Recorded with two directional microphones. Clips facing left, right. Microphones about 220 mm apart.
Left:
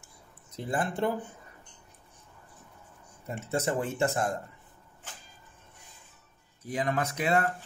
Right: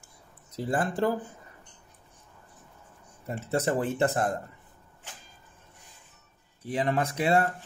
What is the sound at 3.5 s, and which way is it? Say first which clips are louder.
Speech: right 3 dB; 35° right (ahead or behind).